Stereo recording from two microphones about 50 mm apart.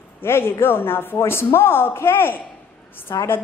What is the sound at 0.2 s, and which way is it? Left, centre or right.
A man's voice, left.